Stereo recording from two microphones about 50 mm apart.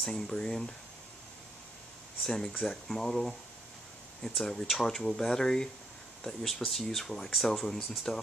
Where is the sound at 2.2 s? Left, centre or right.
Centre.